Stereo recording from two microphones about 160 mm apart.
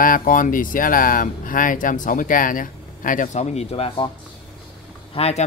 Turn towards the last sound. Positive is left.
turn(degrees=40)  # may be behind; listen again after turning